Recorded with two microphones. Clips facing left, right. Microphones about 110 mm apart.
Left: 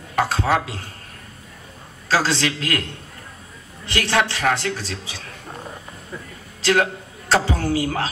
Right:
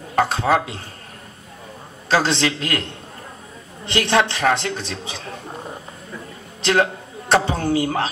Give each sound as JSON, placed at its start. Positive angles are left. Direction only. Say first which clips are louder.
{"t": 0.2, "sound": "a man's voice", "louder": "right 2 dB", "side_deg": -20}
{"t": 2.0, "sound": "a man's voice", "louder": "right 2 dB", "side_deg": -20}
{"t": 6.6, "sound": "speech", "louder": "right 1 dB", "side_deg": -25}